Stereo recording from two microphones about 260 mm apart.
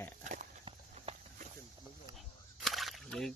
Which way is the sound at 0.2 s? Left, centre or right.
Right.